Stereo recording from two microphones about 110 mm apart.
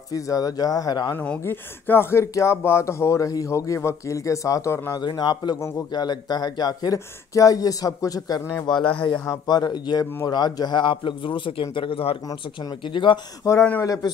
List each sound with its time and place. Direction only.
0.1 s speech: 35° left (ahead or behind)
1.1 s speech: 15° left (ahead or behind)
5.0 s speech: 40° left (ahead or behind)
8.6 s a man's voice: 50° left (ahead or behind)
9.2 s a man's voice: 35° left (ahead or behind); by 12.2 s 55° left (ahead or behind)
12.3 s a man's voice: 40° left (ahead or behind)
13.4 s speech: 30° left (ahead or behind)